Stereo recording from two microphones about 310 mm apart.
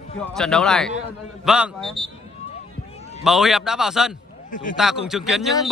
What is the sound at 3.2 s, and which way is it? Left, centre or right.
Speech, centre.